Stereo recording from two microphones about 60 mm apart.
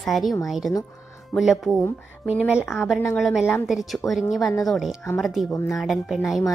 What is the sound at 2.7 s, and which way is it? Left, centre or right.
Speech, centre.